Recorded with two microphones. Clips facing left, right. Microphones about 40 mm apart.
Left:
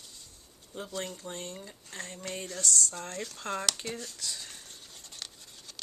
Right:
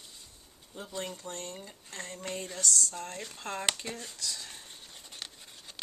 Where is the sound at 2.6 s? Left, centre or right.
Left.